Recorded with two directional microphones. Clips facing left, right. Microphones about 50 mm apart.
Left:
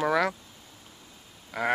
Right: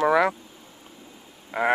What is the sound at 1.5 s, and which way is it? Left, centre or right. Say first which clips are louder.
Speech: right 5 dB; right.